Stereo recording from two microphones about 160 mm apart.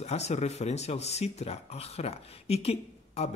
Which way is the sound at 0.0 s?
45° left (ahead or behind).